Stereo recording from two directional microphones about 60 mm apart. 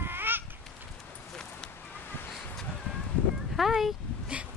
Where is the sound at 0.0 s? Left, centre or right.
Right.